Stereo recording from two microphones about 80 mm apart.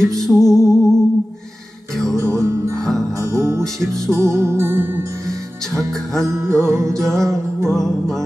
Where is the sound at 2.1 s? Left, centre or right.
Right.